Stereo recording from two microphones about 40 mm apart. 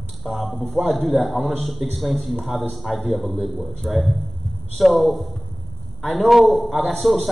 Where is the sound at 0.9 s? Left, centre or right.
Centre.